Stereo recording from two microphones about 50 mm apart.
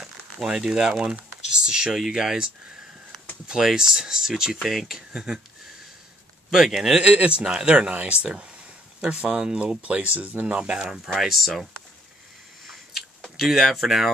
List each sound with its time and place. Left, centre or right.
0.0 s speech: centre
3.4 s speech: centre
6.5 s speech: centre
7.0 s speech: right
11.1 s speech: centre
13.4 s speech: centre